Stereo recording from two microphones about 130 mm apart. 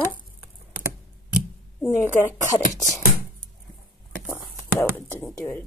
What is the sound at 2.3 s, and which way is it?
Speech, 25° left (ahead or behind).